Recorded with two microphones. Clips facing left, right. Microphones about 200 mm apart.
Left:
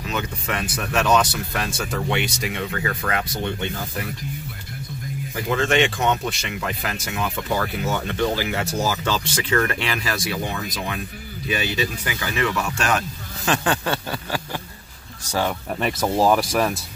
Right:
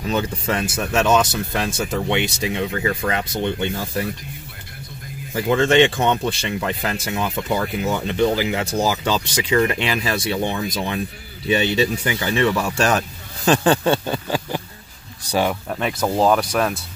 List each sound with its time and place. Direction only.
0.1 s speech: 30° right (ahead or behind)
5.3 s speech: 25° right (ahead or behind)
15.7 s speech: centre (ahead or behind)